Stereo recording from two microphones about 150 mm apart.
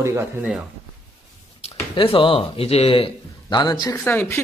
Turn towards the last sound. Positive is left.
turn(degrees=15)  # may be behind; listen again after turning